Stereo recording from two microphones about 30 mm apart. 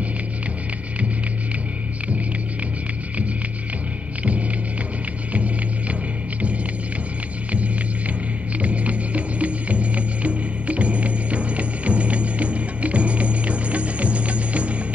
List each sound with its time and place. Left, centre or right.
5.3 s music: right
8.5 s music: right